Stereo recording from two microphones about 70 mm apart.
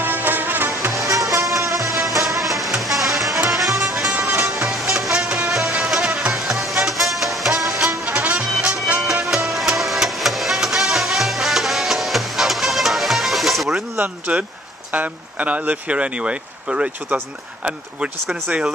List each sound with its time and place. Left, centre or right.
0.0 s music: right
1.4 s music: centre
8.1 s music: right; by 13.8 s centre
13.9 s a sound: right
14.9 s speech: right